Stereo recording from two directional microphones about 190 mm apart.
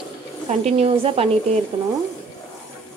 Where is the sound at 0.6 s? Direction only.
30° right (ahead or behind).